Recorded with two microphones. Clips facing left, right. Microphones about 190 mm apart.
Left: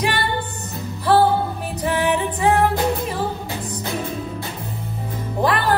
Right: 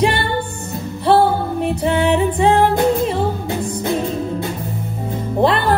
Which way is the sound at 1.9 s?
30° right (ahead or behind).